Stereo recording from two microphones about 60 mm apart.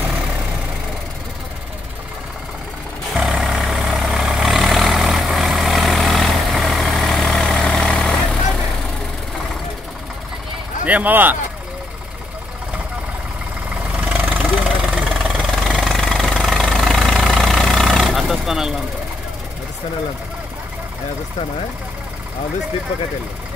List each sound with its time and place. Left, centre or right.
3.2 s vehicle: centre
10.9 s speech: right
14.4 s vehicle: centre